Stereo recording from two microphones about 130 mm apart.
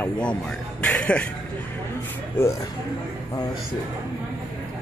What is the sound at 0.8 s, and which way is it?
Music, 10° left (ahead or behind).